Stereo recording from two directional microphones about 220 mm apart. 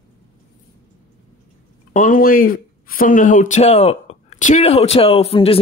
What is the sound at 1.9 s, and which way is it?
Speech, 40° left (ahead or behind).